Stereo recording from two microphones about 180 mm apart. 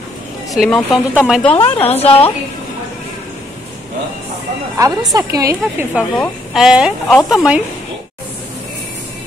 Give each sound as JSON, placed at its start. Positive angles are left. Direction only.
{"t": 0.5, "sound": "speech", "side_deg": 0}
{"t": 1.5, "sound": "a woman's voice", "side_deg": 35}
{"t": 4.7, "sound": "a woman's voice", "side_deg": -20}
{"t": 5.6, "sound": "a woman's voice", "side_deg": -5}